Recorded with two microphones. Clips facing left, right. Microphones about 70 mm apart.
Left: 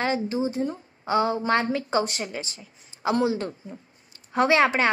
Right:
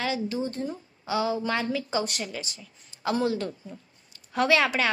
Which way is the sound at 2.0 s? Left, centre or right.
Left.